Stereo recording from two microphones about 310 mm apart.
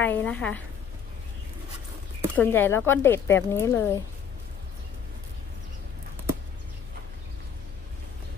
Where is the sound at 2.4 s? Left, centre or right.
Centre.